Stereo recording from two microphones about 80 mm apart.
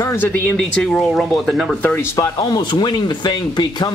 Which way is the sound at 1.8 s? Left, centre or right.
Left.